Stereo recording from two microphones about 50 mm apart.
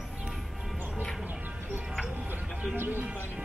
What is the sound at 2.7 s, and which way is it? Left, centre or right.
Speech, right.